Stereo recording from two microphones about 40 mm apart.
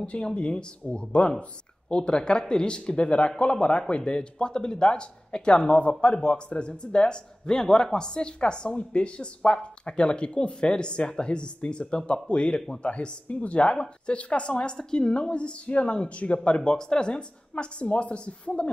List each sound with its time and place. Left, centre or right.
0.0 s speech: left